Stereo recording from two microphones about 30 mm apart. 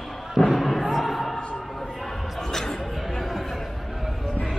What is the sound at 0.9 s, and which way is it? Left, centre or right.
Music, centre.